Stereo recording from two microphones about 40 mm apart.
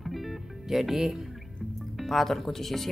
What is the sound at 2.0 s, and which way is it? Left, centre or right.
Speech, centre.